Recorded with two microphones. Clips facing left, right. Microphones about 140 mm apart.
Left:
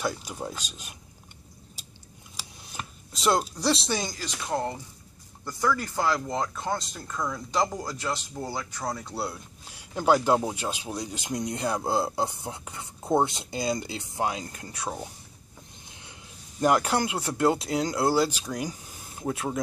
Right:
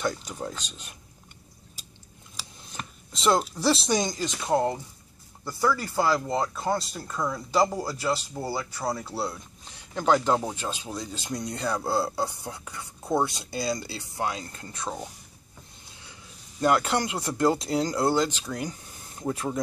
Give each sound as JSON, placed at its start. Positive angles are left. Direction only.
{"t": 0.0, "sound": "speech", "side_deg": 10}
{"t": 2.7, "sound": "speech", "side_deg": 5}
{"t": 3.9, "sound": "speech", "side_deg": -20}
{"t": 5.4, "sound": "speech", "side_deg": -5}
{"t": 15.9, "sound": "a sound", "side_deg": 20}
{"t": 16.6, "sound": "speech", "side_deg": 15}